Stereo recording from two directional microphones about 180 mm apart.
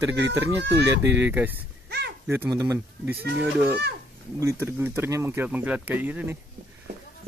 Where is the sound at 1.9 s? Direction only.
70° right (ahead or behind).